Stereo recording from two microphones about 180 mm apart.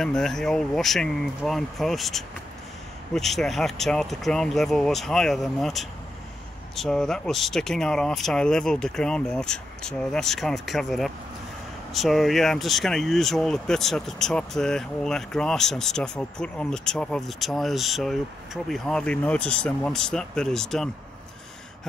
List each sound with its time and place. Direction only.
0.0 s speech: 5° left (ahead or behind)